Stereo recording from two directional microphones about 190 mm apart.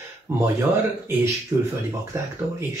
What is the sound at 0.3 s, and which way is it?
Speech, 10° right (ahead or behind).